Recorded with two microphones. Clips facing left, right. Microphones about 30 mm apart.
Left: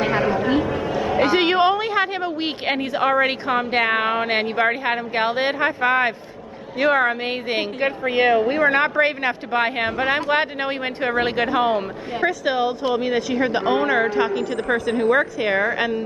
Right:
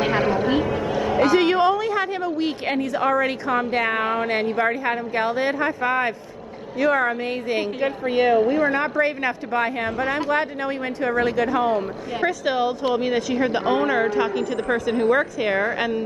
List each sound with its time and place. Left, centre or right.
0.0 s a sound: centre
1.2 s a woman's voice: left
12.2 s a woman's voice: centre